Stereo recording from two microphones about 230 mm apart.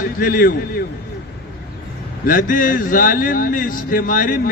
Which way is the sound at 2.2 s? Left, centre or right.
Left.